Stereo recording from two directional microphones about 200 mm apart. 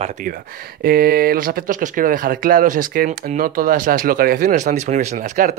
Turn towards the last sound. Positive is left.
turn(degrees=-35)  # may be behind; listen again after turning